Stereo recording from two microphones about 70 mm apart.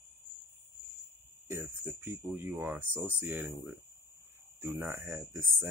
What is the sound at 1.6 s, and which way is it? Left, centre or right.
Speech, right.